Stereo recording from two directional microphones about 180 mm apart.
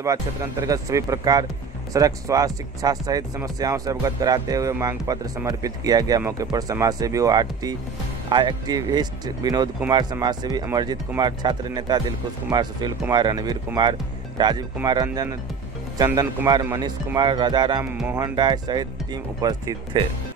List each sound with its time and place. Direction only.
0.0 s speech: 20° right (ahead or behind)
16.6 s speech: 15° right (ahead or behind)
17.8 s speech: 10° right (ahead or behind)
18.1 s speech: 20° right (ahead or behind)